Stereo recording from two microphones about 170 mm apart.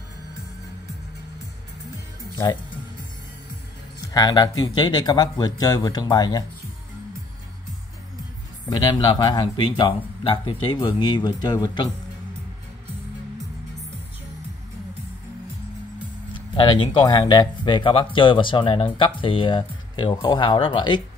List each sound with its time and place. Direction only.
4.1 s speech: 20° left (ahead or behind)
8.7 s speech: 25° left (ahead or behind)
16.3 s speech: 30° left (ahead or behind)